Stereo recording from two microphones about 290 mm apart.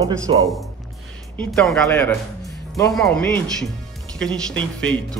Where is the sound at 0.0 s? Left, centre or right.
Centre.